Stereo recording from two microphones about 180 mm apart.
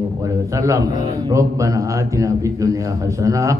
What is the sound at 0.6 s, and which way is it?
A man's voice, 15° right (ahead or behind).